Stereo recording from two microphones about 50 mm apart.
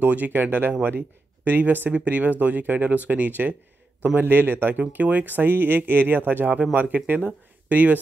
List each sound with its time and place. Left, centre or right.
0.0 s speech: right